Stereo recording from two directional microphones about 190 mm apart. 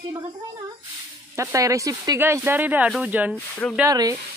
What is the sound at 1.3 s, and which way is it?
Speech, 15° right (ahead or behind).